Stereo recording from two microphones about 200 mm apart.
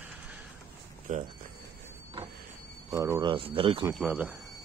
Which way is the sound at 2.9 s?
15° right (ahead or behind).